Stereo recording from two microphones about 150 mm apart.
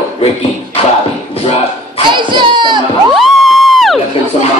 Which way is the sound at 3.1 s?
Centre (ahead or behind).